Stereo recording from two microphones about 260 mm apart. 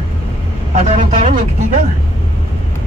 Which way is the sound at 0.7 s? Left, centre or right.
Right.